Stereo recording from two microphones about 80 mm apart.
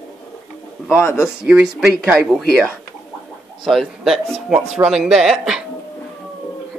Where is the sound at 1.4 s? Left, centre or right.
Centre.